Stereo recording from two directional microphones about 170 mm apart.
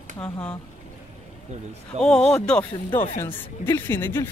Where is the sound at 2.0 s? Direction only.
5° left (ahead or behind).